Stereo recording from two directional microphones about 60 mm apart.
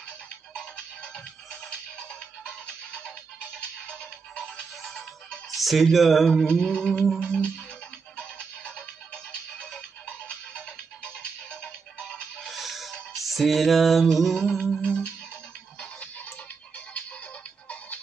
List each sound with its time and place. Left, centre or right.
0.6 s music: centre
5.5 s speech: centre
6.4 s mantra: centre
8.2 s music: centre
12.4 s music: centre
15.8 s music: left